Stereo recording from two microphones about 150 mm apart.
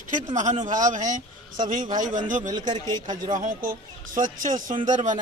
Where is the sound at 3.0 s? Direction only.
60° right (ahead or behind).